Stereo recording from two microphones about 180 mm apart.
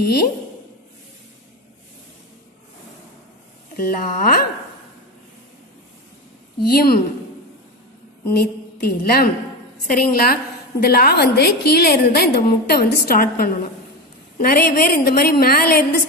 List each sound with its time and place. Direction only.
0.0 s a woman's voice: 60° left (ahead or behind)
3.7 s speech: 50° left (ahead or behind)
6.6 s a woman's voice: 60° left (ahead or behind)
8.3 s a woman's voice: 60° left (ahead or behind)